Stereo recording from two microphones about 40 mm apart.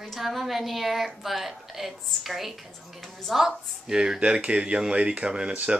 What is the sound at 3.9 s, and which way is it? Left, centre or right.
Speech, centre.